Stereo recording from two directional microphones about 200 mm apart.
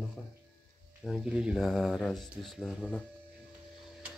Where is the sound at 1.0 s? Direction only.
5° right (ahead or behind).